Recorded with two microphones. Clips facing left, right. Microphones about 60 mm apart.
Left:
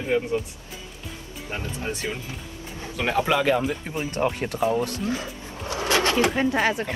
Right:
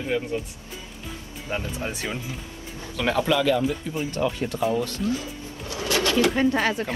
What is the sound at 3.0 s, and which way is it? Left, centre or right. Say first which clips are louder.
Speech: even; left.